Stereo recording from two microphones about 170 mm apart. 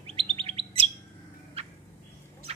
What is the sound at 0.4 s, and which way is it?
Bird, 35° right (ahead or behind).